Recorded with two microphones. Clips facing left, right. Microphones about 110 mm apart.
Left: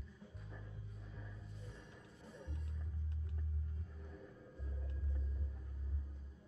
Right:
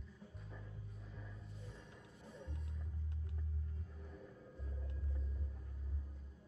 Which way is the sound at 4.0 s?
Centre (ahead or behind).